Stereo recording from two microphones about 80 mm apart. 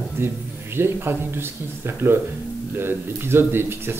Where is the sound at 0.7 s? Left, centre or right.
Right.